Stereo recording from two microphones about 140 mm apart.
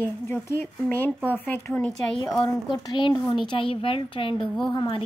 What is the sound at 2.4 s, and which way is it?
A woman's voice, 30° left (ahead or behind).